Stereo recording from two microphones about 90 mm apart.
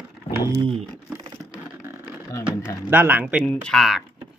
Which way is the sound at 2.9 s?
20° right (ahead or behind).